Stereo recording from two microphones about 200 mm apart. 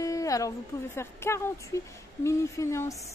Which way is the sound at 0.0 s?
15° left (ahead or behind).